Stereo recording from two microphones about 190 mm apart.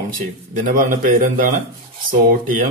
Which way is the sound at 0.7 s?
45° right (ahead or behind).